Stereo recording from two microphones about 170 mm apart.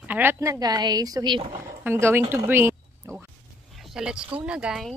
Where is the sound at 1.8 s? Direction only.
15° right (ahead or behind).